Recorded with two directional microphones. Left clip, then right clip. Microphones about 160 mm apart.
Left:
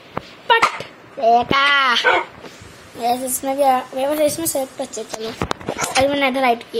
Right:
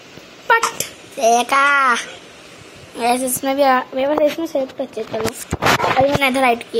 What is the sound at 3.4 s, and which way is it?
Speech, 15° right (ahead or behind).